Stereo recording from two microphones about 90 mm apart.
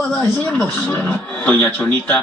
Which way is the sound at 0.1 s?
20° left (ahead or behind).